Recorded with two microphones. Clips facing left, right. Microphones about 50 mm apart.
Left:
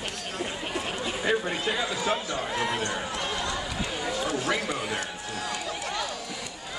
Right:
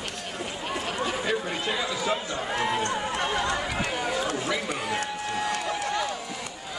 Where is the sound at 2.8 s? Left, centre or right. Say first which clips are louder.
Right 3 dB; right.